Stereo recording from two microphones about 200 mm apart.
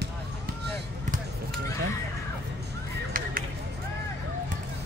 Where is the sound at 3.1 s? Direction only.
45° right (ahead or behind).